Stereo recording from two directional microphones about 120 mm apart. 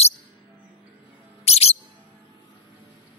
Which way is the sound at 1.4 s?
60° left (ahead or behind).